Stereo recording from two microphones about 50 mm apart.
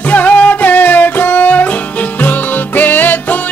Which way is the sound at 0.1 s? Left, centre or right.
Left.